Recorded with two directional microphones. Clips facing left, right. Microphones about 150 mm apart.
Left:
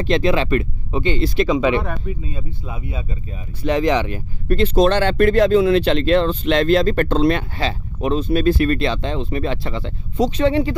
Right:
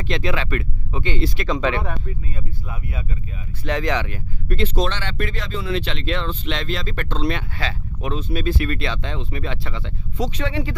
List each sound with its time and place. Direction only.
0.0 s speech: 30° left (ahead or behind)
1.5 s speech: 10° left (ahead or behind)
2.0 s speech: 20° left (ahead or behind)
4.5 s speech: 40° left (ahead or behind)
7.5 s speech: 30° left (ahead or behind)
8.3 s speech: 50° left (ahead or behind); by 10.8 s 30° left (ahead or behind)